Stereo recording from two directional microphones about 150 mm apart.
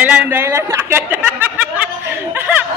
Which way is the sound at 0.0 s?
10° right (ahead or behind).